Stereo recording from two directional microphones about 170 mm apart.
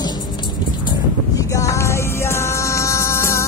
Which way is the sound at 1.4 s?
20° left (ahead or behind).